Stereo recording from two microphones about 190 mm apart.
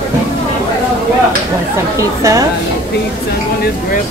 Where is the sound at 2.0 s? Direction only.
15° right (ahead or behind).